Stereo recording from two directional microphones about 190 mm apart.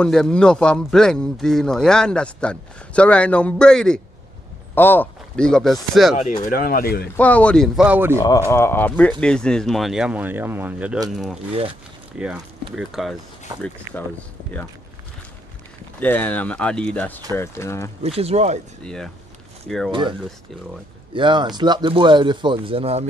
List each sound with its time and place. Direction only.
0.0 s speech: 5° left (ahead or behind)
6.4 s speech: 50° left (ahead or behind)
7.2 s speech: 10° left (ahead or behind); by 8.2 s 10° right (ahead or behind)
8.5 s speech: 15° left (ahead or behind); by 13.1 s centre (ahead or behind)
16.0 s speech: 10° left (ahead or behind)
18.0 s speech: 35° right (ahead or behind)
19.9 s speech: 25° right (ahead or behind)